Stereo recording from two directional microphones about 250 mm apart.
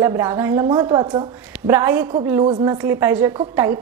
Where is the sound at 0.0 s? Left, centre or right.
Centre.